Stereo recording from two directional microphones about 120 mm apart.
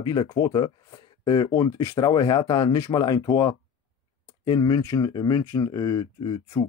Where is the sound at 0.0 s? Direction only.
40° left (ahead or behind).